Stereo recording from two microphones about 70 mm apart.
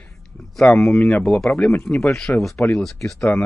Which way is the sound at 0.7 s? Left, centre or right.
Centre.